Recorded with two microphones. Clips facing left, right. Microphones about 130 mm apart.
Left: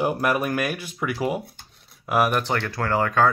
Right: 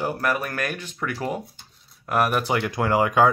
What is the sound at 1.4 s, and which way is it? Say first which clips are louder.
Rub: even; 65° left (ahead or behind).